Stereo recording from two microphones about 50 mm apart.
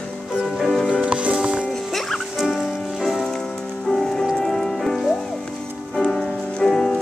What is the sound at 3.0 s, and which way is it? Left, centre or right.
Music, centre.